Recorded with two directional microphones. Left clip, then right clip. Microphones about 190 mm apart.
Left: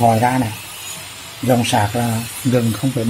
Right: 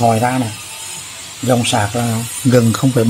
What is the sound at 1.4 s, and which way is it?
Speech, 10° right (ahead or behind).